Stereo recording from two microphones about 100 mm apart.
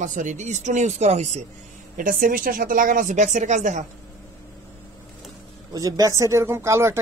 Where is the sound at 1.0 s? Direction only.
90° right.